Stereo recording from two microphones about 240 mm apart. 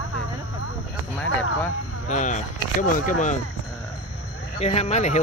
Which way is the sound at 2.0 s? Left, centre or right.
Left.